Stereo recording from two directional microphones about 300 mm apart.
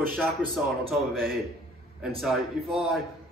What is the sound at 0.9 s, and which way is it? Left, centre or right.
Speech, centre.